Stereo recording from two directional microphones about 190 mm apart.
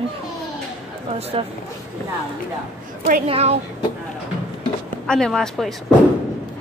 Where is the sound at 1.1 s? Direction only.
30° right (ahead or behind).